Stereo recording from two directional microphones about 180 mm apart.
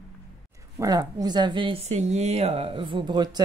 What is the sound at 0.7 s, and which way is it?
Speech, 20° right (ahead or behind).